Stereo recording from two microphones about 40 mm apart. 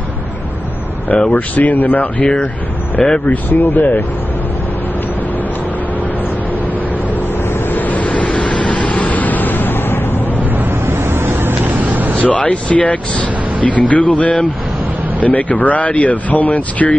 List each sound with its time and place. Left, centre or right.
1.3 s speech: left
3.3 s speech: left
7.7 s vehicle: left
10.9 s vehicle: right
12.2 s speech: left